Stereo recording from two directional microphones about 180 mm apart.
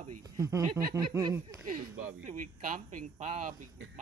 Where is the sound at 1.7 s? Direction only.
50° right (ahead or behind).